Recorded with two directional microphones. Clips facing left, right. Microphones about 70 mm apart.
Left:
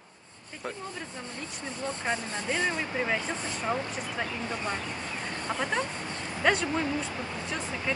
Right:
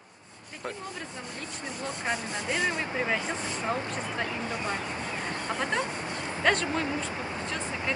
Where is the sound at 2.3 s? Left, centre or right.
Centre.